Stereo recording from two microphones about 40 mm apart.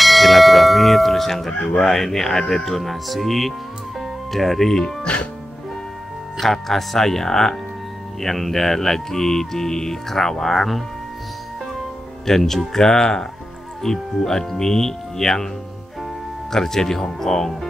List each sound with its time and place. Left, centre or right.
0.0 s bell: centre
1.8 s speech: centre
5.0 s music: left
6.4 s speech: centre
12.3 s speech: centre
16.5 s speech: centre